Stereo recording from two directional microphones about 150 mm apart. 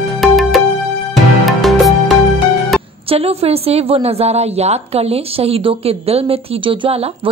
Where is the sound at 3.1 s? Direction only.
40° right (ahead or behind).